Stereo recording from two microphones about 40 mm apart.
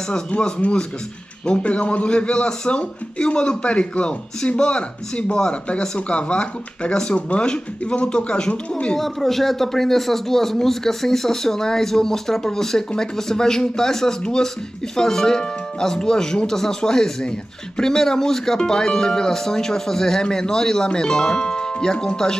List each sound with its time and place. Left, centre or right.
0.1 s a man's voice: left
8.9 s speech: centre